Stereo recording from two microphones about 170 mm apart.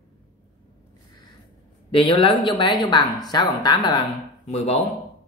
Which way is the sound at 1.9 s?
30° left (ahead or behind).